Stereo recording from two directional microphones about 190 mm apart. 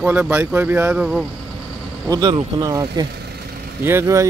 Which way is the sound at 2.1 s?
20° right (ahead or behind).